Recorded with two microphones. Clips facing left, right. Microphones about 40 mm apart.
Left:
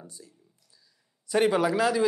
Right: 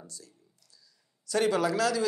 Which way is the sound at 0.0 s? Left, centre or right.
Left.